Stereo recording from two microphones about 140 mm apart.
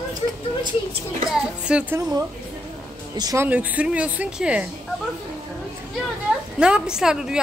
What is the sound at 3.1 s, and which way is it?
Speech, 30° right (ahead or behind).